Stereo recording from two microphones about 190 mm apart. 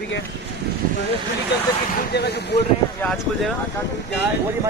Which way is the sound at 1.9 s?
60° left (ahead or behind).